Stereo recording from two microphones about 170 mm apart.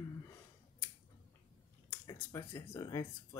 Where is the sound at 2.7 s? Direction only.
20° left (ahead or behind).